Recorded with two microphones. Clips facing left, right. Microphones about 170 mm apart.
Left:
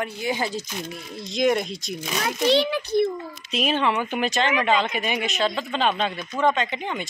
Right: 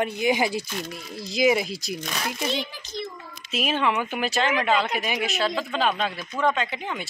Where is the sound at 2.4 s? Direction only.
75° left (ahead or behind).